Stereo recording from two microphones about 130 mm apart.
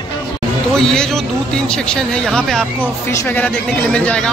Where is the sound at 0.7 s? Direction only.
5° left (ahead or behind).